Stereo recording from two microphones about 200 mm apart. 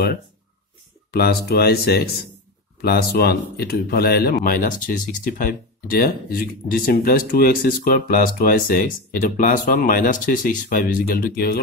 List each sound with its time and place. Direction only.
1.1 s speech: 50° left (ahead or behind)